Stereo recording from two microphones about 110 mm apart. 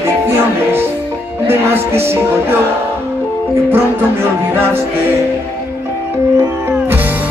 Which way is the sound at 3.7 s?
20° right (ahead or behind).